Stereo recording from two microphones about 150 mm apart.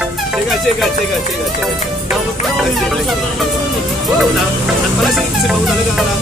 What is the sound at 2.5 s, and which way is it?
Music, centre (ahead or behind).